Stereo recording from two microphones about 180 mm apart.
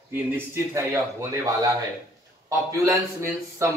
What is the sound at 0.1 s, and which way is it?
Speech, 10° right (ahead or behind).